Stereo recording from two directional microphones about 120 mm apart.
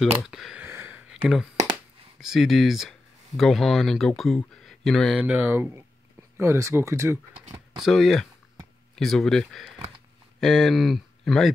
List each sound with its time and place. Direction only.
0.2 s speech: 5° right (ahead or behind)
0.6 s a sound: 20° right (ahead or behind)
1.1 s speech: 5° right (ahead or behind)
5.2 s speech: 15° right (ahead or behind)
7.8 s speech: centre (ahead or behind)